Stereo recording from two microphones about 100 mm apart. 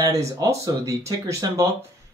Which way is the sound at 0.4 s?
30° right (ahead or behind).